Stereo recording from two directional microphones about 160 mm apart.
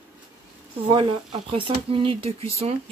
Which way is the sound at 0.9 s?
35° right (ahead or behind).